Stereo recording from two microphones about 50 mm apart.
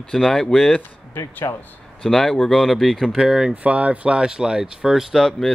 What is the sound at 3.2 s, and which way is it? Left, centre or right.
Speech, centre.